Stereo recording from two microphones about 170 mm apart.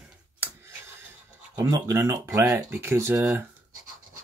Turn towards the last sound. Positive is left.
turn(degrees=-15)  # may be behind; listen again after turning